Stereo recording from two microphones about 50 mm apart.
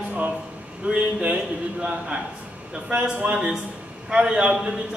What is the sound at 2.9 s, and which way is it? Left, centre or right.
Speech, right.